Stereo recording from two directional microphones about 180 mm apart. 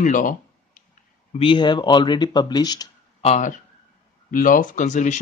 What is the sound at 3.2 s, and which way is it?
Speech, 40° left (ahead or behind).